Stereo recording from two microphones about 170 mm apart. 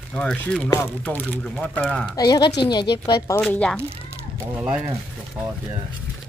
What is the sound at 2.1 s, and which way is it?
Speech, 25° left (ahead or behind).